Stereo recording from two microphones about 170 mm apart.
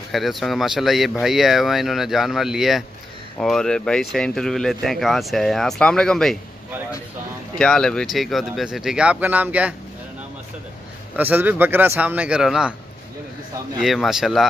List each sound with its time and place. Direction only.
0.1 s speech: centre (ahead or behind)
7.5 s speech: 5° left (ahead or behind)
11.1 s speech: 10° right (ahead or behind)
13.7 s speech: centre (ahead or behind)